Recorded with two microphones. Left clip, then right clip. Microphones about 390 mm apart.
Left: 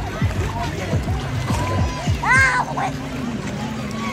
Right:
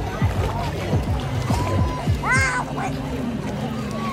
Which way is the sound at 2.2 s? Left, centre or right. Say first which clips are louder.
Left 5 dB; centre.